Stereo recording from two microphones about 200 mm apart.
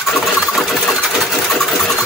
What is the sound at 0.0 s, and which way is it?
Sewing machine, centre (ahead or behind).